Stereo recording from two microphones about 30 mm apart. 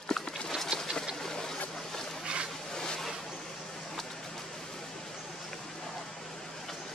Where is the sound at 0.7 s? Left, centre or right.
Right.